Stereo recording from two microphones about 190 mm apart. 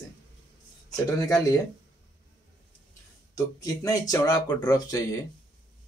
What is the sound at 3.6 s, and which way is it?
Speech, 20° left (ahead or behind).